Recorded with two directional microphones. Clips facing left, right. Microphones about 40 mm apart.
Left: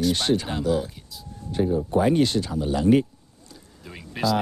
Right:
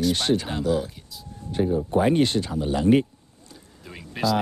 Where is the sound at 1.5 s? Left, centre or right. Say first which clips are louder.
Even; right.